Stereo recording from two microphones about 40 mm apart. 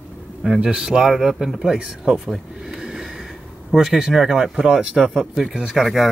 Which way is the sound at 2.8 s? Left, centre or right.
Centre.